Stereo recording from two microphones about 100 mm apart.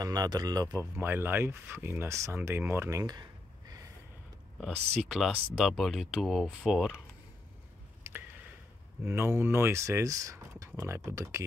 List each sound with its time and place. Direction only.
0.0 s speech: 40° right (ahead or behind)
1.0 s speech: 20° right (ahead or behind); by 3.3 s 35° right (ahead or behind)
4.6 s speech: 5° right (ahead or behind)
9.0 s speech: 25° right (ahead or behind)